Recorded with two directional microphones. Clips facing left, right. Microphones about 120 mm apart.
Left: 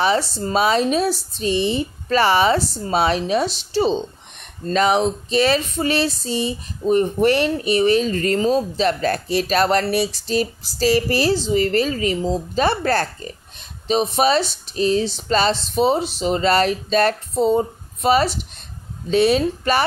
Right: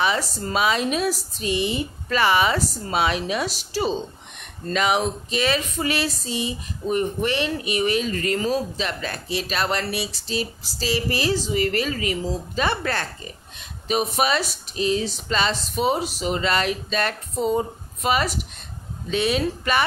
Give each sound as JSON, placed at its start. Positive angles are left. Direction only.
{"t": 0.0, "sound": "speech", "side_deg": 30}